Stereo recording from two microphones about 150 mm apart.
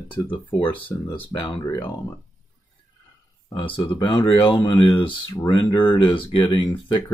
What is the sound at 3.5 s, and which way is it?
Speech, 35° left (ahead or behind).